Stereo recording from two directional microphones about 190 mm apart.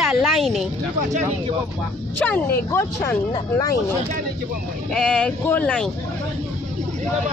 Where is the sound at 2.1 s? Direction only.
10° left (ahead or behind).